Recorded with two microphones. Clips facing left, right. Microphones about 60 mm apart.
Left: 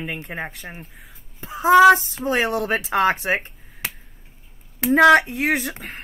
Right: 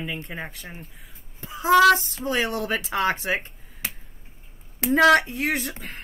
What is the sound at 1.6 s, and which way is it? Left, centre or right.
Child singing, centre.